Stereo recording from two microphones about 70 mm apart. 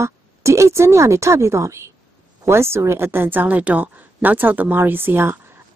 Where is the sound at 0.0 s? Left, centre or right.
Right.